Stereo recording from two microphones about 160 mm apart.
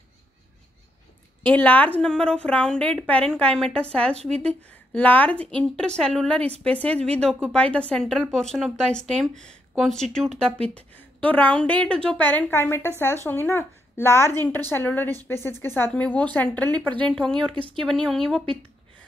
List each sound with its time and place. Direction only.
1.4 s a woman's voice: 10° left (ahead or behind)
17.5 s speech: 35° right (ahead or behind)
17.7 s speech: 5° left (ahead or behind)